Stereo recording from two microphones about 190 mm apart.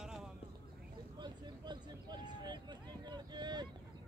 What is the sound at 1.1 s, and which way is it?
Vehicle, 25° right (ahead or behind).